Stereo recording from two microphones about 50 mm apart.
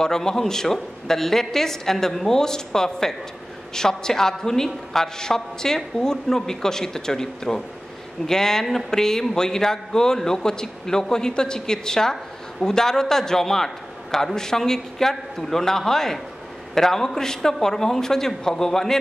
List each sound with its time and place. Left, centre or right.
0.0 s a man's voice: centre